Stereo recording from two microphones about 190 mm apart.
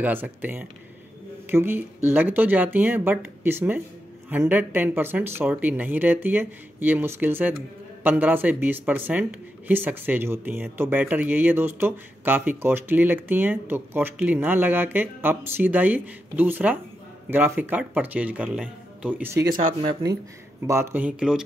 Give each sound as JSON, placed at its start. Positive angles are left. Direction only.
{"t": 0.0, "sound": "speech", "side_deg": -10}
{"t": 20.6, "sound": "speech", "side_deg": -15}